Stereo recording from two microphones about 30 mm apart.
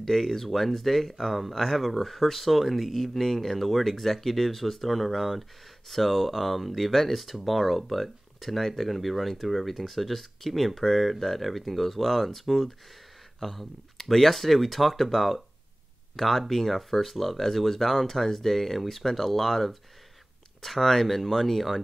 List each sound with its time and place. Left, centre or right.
0.0 s speech: centre